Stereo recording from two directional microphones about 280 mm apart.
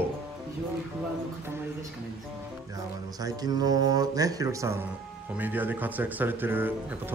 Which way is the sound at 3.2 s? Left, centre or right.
Centre.